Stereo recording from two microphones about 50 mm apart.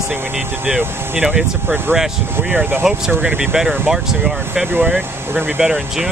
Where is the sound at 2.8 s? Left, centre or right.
Centre.